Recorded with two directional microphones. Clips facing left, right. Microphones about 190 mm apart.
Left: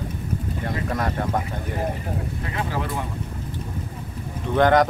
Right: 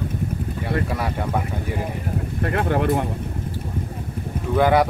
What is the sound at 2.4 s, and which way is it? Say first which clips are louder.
Speech: right 9 dB; 60° right (ahead or behind).